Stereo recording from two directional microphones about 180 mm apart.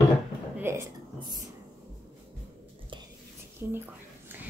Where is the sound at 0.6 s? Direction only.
15° right (ahead or behind).